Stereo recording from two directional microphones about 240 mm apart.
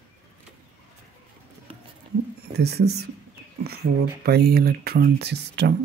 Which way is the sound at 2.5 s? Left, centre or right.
Right.